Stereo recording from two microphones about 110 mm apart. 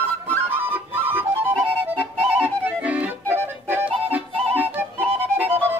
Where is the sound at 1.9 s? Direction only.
15° right (ahead or behind).